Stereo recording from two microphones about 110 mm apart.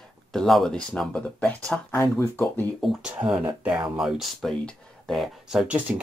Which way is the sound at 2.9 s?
10° right (ahead or behind).